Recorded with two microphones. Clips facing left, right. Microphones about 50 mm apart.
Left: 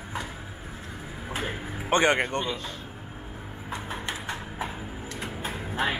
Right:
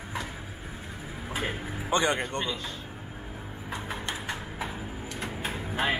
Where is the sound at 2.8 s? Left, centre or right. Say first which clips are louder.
Even; centre.